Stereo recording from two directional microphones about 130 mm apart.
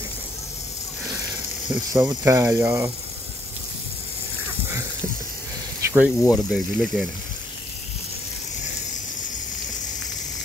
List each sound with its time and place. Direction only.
2.0 s speech: 25° right (ahead or behind)
5.9 s speech: 10° right (ahead or behind)
6.3 s speech: centre (ahead or behind)